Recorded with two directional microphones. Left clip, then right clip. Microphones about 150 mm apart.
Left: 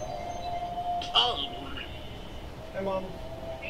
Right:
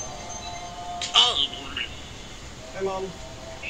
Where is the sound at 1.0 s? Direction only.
5° right (ahead or behind).